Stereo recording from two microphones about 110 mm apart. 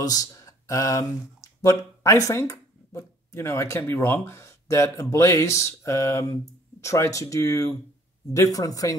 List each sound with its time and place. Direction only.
0.0 s speech: 35° left (ahead or behind)